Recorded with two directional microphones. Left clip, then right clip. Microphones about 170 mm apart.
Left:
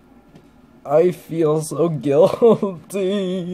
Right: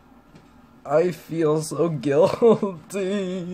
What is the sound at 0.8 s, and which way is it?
Speech, 15° left (ahead or behind).